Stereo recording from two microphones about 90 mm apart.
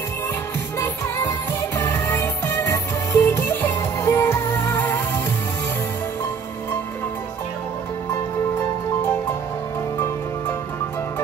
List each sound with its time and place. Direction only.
0.7 s music: 30° left (ahead or behind)